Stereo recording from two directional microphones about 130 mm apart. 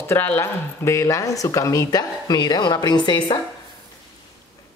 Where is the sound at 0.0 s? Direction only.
15° left (ahead or behind); by 3.3 s 35° left (ahead or behind).